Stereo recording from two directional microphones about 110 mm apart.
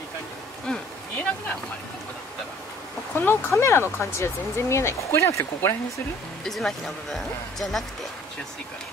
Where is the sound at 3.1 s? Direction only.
20° left (ahead or behind).